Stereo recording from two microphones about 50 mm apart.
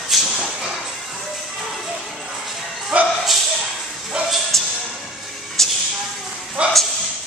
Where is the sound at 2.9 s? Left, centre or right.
Right.